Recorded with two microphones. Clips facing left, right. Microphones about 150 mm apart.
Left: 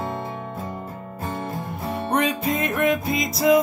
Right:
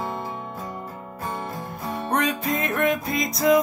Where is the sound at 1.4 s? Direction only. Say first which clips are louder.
Left 2 dB; 25° left (ahead or behind).